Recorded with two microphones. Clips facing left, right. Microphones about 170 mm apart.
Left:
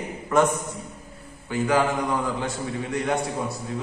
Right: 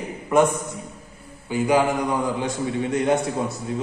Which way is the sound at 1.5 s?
15° right (ahead or behind).